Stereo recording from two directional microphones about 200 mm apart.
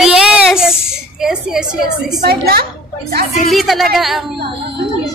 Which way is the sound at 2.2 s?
50° right (ahead or behind).